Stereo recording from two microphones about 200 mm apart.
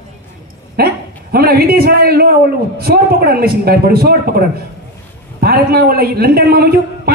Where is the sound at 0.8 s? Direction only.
50° right (ahead or behind).